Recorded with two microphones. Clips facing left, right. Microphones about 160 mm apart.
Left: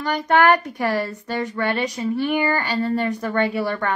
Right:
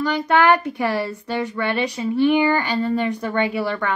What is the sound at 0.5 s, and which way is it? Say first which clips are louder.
Speech: right 1 dB; 50° left (ahead or behind).